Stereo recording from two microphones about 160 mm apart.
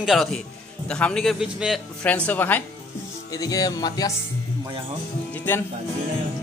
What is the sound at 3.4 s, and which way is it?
Music, 25° left (ahead or behind).